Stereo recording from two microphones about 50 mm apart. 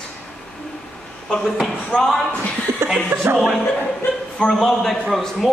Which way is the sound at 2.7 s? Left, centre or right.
Right.